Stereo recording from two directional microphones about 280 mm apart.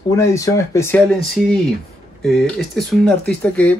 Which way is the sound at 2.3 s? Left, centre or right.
Centre.